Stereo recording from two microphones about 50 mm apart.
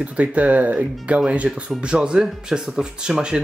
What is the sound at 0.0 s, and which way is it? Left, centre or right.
Speech, right.